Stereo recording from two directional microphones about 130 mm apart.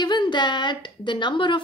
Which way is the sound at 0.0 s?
35° left (ahead or behind).